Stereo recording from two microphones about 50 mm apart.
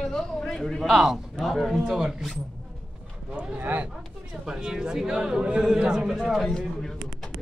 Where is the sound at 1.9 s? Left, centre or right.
Centre.